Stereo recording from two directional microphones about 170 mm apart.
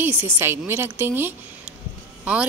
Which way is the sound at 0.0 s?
10° right (ahead or behind).